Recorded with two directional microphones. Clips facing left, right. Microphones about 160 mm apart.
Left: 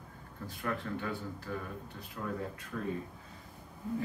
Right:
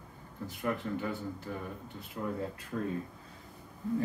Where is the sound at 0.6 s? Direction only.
20° right (ahead or behind).